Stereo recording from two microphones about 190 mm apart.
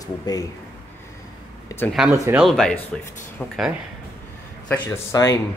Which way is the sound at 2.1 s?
15° right (ahead or behind).